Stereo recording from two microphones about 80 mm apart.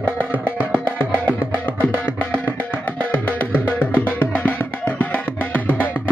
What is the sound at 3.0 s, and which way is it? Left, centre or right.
Music, left.